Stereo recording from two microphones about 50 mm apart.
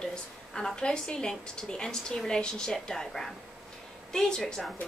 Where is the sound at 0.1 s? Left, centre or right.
Centre.